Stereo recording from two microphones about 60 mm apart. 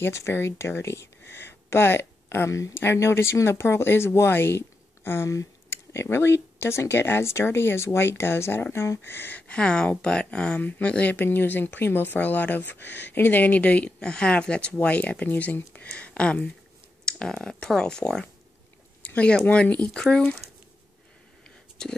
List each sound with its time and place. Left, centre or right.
0.0 s speech: left
2.7 s speech: left
9.5 s speech: centre
11.2 s speech: left; by 18.3 s centre
19.0 s a sound: left
19.4 s speech: left
21.5 s a sound: centre